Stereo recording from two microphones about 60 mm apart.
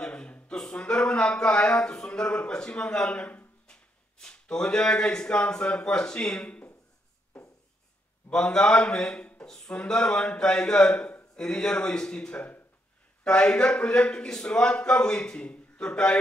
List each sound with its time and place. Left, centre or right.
0.0 s a sound: centre
3.6 s speech: centre
8.3 s a man's voice: centre